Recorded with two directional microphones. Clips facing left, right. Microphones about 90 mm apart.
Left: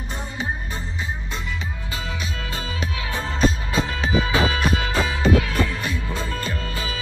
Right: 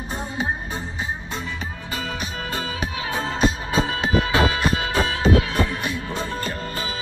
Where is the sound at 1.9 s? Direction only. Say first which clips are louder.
Right 3 dB; 45° right (ahead or behind).